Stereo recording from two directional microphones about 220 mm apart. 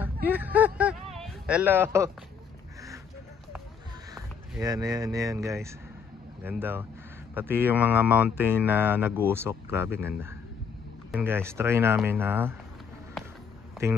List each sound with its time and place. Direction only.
0.0 s speech: 10° right (ahead or behind)
4.1 s speech: 15° right (ahead or behind)